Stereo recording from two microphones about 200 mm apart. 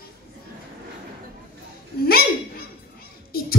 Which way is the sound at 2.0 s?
50° left (ahead or behind).